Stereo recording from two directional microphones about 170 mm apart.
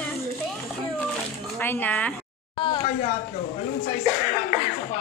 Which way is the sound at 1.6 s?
10° left (ahead or behind).